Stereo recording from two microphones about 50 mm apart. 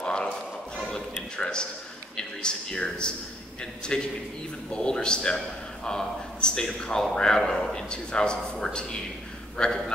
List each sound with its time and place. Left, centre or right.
0.0 s music: centre
0.7 s a sound: centre
1.3 s a man's voice: centre